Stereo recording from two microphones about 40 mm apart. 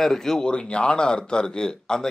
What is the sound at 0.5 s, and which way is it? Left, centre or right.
A man's voice, left.